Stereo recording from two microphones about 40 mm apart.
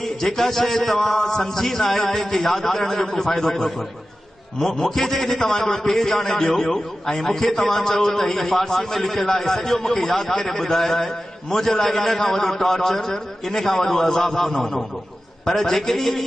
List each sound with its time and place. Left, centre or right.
0.0 s a man's voice: centre